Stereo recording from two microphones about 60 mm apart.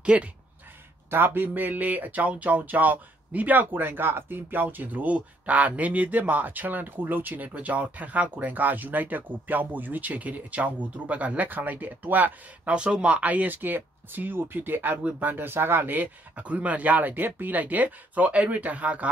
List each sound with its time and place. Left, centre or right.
0.0 s speech: centre
1.1 s speech: right
12.7 s speech: centre